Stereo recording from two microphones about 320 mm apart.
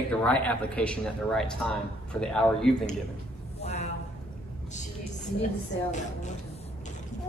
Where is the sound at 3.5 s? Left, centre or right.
Centre.